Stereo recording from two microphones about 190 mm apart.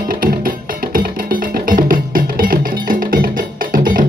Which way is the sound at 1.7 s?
45° right (ahead or behind).